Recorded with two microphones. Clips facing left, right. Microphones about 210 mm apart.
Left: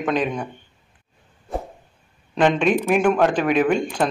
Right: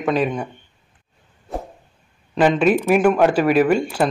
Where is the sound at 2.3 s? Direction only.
5° right (ahead or behind).